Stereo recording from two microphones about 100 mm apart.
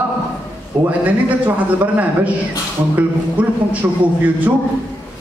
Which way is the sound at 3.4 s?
15° right (ahead or behind).